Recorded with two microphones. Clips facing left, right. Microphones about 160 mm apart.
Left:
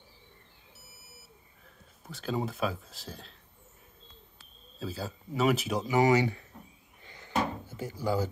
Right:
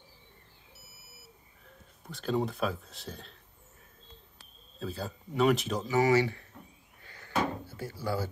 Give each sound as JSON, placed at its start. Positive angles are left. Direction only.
{"t": 2.0, "sound": "speech", "side_deg": 0}
{"t": 4.7, "sound": "speech", "side_deg": 5}
{"t": 7.0, "sound": "drawer open or close", "side_deg": 20}